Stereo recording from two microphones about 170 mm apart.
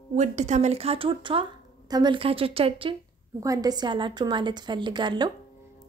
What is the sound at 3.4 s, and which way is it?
A woman's voice, 20° right (ahead or behind).